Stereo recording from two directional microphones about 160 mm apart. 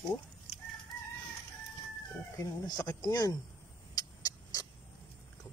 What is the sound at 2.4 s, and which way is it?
Speech, 25° left (ahead or behind).